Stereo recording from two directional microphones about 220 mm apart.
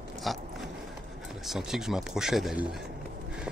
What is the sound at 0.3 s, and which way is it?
Speech, centre (ahead or behind).